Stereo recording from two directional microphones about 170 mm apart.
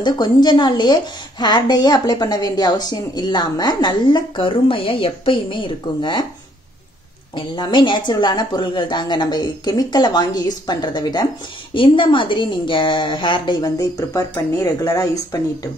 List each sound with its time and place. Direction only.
0.0 s a woman's voice: 25° left (ahead or behind)
7.3 s a woman's voice: 30° left (ahead or behind)